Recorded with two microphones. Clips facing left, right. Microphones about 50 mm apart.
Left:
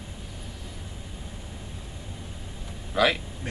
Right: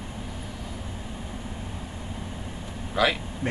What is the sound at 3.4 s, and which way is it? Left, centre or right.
Speech, right.